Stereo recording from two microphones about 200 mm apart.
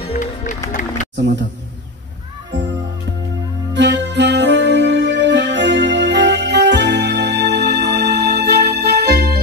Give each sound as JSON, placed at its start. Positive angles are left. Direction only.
{"t": 0.0, "sound": "music", "side_deg": 35}
{"t": 1.1, "sound": "speech", "side_deg": -60}
{"t": 3.7, "sound": "music", "side_deg": -60}